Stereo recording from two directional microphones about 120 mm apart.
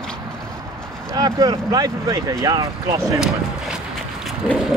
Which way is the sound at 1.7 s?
30° right (ahead or behind).